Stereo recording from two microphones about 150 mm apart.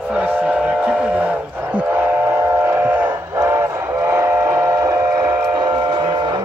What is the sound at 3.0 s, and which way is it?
Train, 20° right (ahead or behind).